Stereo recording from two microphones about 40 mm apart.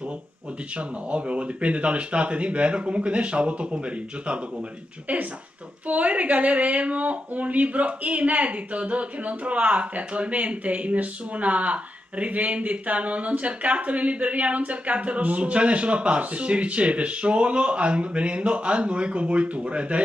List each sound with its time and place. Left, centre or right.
0.7 s speech: right
5.9 s speech: right